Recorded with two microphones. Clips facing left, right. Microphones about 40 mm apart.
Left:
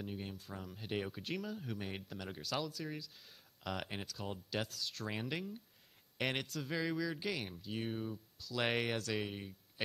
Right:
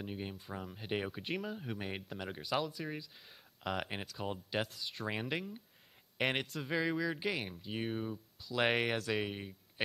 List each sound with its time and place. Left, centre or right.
0.0 s speech: right